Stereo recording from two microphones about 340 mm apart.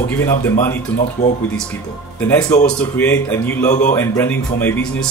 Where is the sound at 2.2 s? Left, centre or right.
Centre.